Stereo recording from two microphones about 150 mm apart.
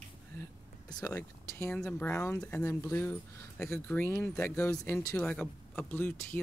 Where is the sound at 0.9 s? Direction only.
20° left (ahead or behind); by 2.6 s 5° left (ahead or behind).